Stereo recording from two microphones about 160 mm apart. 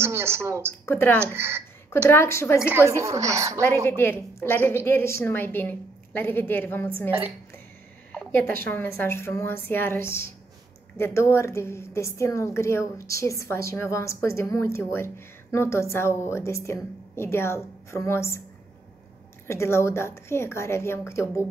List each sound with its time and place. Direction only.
0.0 s a woman's voice: 15° right (ahead or behind)
0.8 s a woman's voice: 15° left (ahead or behind)
1.2 s speech: 15° right (ahead or behind)
2.0 s a woman's voice: 15° left (ahead or behind)
2.9 s a woman's voice: 20° right (ahead or behind)
3.8 s a woman's voice: 15° left (ahead or behind)
7.1 s speech: 10° right (ahead or behind)
8.3 s a woman's voice: 15° left (ahead or behind)
19.4 s a woman's voice: 15° left (ahead or behind)